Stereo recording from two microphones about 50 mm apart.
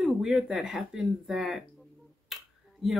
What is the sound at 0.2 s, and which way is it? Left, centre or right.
Speech, centre.